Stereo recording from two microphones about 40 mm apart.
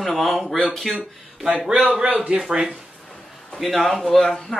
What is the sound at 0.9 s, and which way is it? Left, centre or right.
Speech, centre.